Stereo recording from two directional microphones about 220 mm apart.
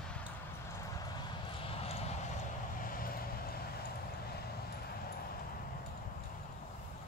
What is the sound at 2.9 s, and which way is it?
Vehicle, 40° left (ahead or behind).